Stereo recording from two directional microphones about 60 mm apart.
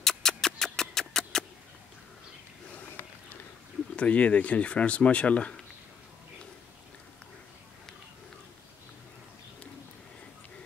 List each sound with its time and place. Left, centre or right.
0.0 s music: centre
0.7 s a sound: centre
3.9 s speech: left